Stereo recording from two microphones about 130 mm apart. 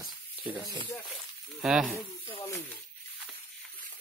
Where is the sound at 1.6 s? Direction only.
Centre (ahead or behind).